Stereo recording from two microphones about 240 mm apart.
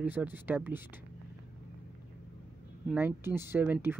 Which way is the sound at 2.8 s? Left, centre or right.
Centre.